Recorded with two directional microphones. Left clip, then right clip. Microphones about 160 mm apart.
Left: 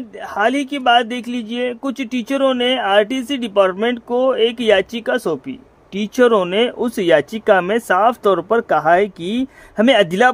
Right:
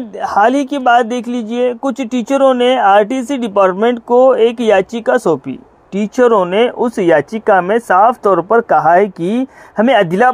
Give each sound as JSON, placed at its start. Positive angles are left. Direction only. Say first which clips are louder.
{"t": 0.2, "sound": "speech", "louder": "right 6 dB", "side_deg": -15}
{"t": 6.1, "sound": "speech", "louder": "right 3 dB", "side_deg": 20}
{"t": 8.4, "sound": "speech", "louder": "right 6 dB", "side_deg": 10}
{"t": 9.8, "sound": "speech", "louder": "right 2 dB", "side_deg": 20}